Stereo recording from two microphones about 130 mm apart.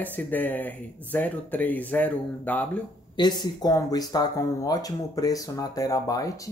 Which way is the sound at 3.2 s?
35° left (ahead or behind).